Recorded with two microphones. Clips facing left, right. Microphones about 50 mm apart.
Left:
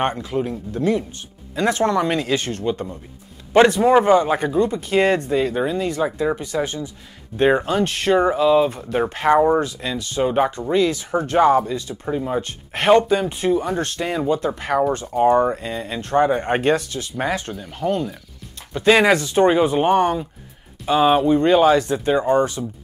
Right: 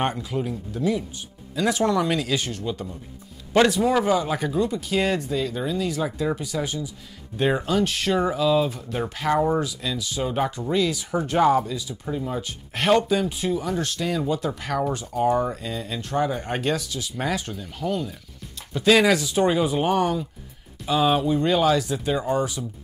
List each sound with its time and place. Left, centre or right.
0.1 s speech: left
6.4 s speech: left
10.9 s speech: left
11.4 s speech: left
11.7 s speech: left
12.1 s speech: left
14.9 s speech: left
19.1 s speech: left
22.2 s speech: left